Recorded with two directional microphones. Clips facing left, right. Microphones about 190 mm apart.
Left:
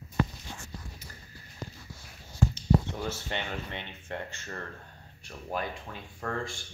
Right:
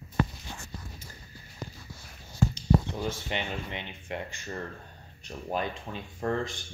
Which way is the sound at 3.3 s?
15° right (ahead or behind).